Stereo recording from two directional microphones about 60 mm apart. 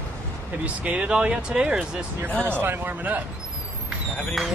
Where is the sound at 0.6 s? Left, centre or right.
Right.